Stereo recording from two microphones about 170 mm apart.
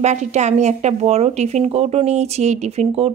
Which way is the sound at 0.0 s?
45° right (ahead or behind).